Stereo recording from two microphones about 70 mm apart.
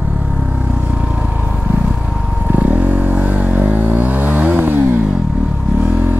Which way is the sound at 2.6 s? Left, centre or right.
Right.